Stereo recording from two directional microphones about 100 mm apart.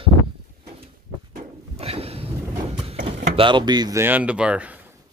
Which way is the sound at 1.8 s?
85° right.